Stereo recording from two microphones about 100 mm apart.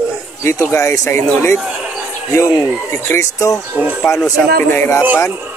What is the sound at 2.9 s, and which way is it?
Speech, 25° left (ahead or behind).